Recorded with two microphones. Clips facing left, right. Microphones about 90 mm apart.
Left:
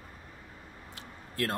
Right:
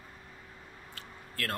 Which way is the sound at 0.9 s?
20° left (ahead or behind).